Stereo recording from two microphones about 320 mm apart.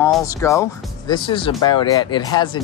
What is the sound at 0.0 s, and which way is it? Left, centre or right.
Speech, centre.